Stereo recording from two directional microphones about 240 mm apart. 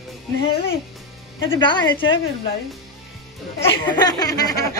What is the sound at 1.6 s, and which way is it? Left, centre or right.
Speech, centre.